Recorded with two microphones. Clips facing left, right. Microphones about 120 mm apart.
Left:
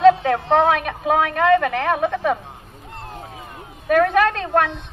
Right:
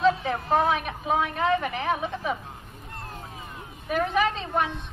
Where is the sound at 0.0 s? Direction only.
70° left (ahead or behind).